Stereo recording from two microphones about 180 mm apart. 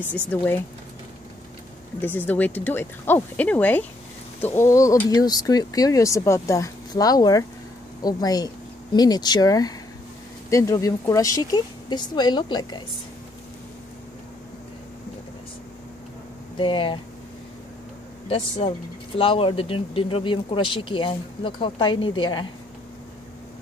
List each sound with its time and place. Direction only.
0.1 s speech: 10° left (ahead or behind)
2.0 s speech: 10° left (ahead or behind)
16.5 s speech: 30° left (ahead or behind)
18.3 s speech: 30° left (ahead or behind)